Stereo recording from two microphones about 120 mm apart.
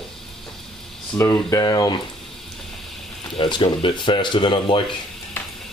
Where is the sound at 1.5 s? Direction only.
35° left (ahead or behind).